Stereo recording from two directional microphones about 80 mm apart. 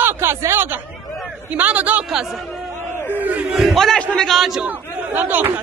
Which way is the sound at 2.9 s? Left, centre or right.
Left.